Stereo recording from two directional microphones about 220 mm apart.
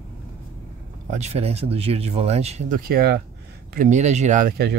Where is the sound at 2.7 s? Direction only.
45° right (ahead or behind).